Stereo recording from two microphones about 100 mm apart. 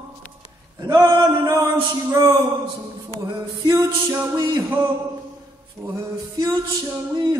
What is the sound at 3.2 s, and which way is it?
Music, 45° right (ahead or behind).